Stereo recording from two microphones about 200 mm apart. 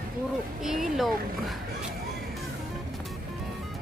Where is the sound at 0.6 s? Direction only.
Centre (ahead or behind).